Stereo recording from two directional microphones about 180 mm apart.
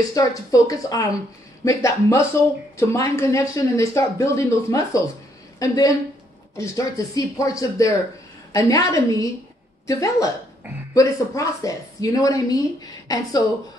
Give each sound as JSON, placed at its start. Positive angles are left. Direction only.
{"t": 0.1, "sound": "speech", "side_deg": 20}